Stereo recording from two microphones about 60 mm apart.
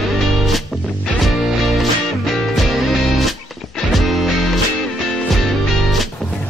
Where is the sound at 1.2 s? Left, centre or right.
Centre.